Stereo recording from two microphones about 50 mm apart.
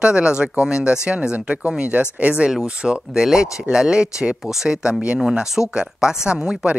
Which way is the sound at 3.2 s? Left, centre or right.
Centre.